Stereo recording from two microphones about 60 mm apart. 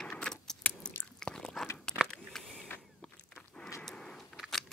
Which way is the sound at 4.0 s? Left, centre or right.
Centre.